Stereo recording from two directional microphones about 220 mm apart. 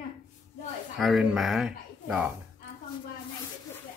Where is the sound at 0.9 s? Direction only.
Centre (ahead or behind).